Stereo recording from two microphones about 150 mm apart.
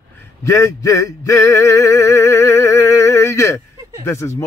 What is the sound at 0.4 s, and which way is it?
Male singing, 20° left (ahead or behind).